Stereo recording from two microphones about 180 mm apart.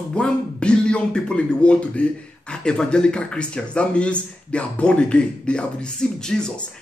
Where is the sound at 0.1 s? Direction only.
5° left (ahead or behind).